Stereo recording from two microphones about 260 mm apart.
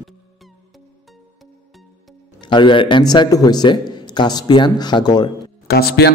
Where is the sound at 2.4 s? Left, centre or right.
Centre.